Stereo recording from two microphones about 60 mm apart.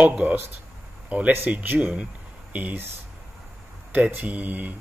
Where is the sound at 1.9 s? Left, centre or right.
Right.